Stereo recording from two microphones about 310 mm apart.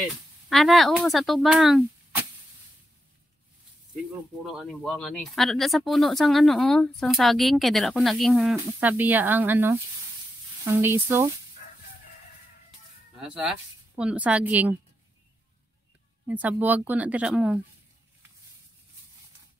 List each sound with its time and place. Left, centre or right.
0.5 s speech: centre
4.6 s speech: centre
13.2 s speech: centre
16.3 s speech: centre